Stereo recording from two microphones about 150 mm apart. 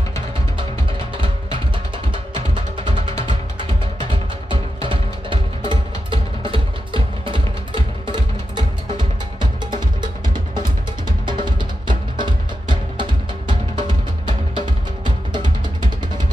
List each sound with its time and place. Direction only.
2.3 s music: 35° right (ahead or behind)